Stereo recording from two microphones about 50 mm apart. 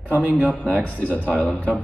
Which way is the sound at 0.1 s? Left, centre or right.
Right.